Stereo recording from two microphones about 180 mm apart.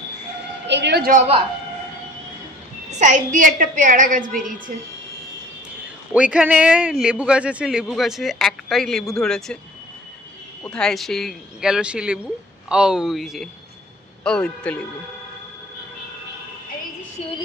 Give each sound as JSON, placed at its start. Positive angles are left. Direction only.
{"t": 0.7, "sound": "a woman's voice", "side_deg": -75}
{"t": 1.1, "sound": "speech", "side_deg": -35}
{"t": 2.9, "sound": "a woman's voice", "side_deg": -40}
{"t": 6.3, "sound": "speech", "side_deg": -5}
{"t": 10.6, "sound": "speech", "side_deg": 5}